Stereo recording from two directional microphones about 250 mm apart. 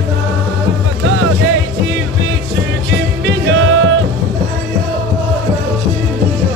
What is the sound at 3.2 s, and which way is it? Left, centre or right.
Music, right.